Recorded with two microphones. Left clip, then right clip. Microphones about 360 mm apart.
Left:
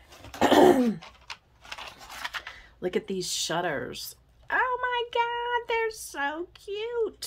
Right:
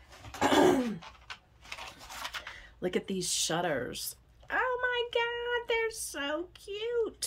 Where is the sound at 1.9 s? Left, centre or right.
Centre.